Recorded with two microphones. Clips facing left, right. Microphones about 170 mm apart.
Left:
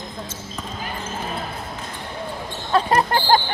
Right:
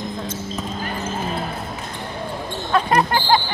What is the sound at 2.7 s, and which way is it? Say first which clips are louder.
Speech: even; 30° left (ahead or behind).